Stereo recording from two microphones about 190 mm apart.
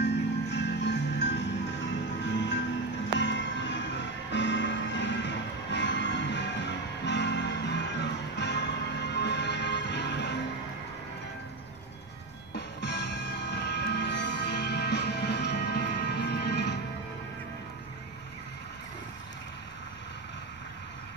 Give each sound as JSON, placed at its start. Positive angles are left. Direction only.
{"t": 0.0, "sound": "music", "side_deg": 65}
{"t": 12.5, "sound": "music", "side_deg": 65}